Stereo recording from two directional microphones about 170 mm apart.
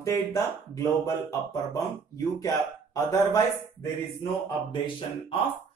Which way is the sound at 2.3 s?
20° left (ahead or behind).